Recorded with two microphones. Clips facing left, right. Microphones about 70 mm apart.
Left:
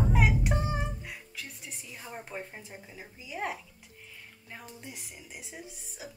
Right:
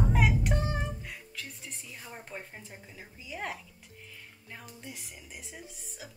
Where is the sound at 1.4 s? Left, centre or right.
Centre.